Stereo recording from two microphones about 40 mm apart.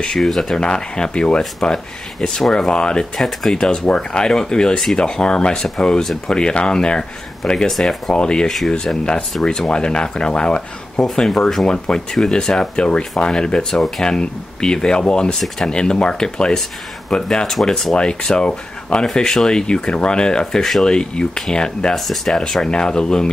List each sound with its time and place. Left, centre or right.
0.2 s speech: centre
0.6 s speech: left
3.2 s speech: centre
3.5 s speech: left
8.5 s speech: centre
9.7 s speech: left
13.7 s speech: centre
14.0 s speech: centre
17.9 s speech: left
21.9 s speech: centre